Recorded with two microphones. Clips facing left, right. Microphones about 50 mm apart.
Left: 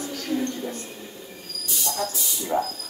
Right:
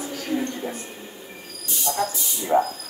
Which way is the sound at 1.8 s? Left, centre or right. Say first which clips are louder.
Right 4 dB; centre.